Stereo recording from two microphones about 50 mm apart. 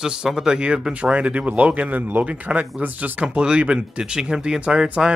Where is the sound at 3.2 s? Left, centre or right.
Centre.